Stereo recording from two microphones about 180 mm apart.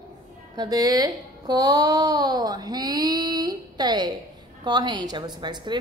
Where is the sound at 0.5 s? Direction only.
20° right (ahead or behind).